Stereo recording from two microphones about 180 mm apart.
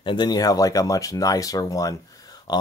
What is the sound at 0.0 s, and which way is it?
Speech, 25° left (ahead or behind).